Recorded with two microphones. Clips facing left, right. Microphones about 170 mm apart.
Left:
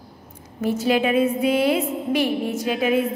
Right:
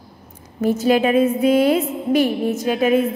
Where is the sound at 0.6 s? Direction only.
45° right (ahead or behind).